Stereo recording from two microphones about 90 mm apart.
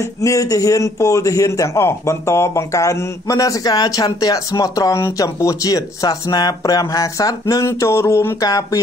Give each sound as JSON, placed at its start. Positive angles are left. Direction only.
{"t": 0.0, "sound": "a man's voice", "side_deg": 35}
{"t": 7.6, "sound": "a man's voice", "side_deg": 30}
{"t": 8.4, "sound": "speech", "side_deg": 45}